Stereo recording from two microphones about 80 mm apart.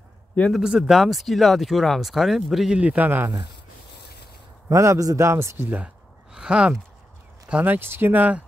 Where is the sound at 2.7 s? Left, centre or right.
Centre.